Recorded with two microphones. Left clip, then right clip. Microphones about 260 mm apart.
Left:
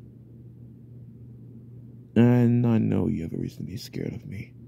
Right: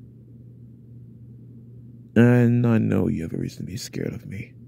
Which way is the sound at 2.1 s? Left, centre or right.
Centre.